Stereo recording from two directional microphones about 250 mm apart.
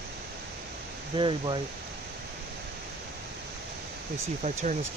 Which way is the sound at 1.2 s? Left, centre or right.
Centre.